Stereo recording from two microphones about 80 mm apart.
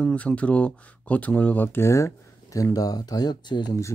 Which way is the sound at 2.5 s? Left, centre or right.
Left.